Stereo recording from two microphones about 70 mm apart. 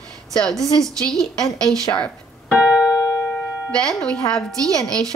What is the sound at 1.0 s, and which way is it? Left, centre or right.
Speech, centre.